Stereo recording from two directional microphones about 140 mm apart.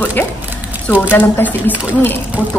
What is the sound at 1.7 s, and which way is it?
Speech, 10° right (ahead or behind).